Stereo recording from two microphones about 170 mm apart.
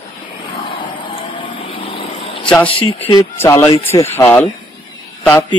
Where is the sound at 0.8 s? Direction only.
30° left (ahead or behind).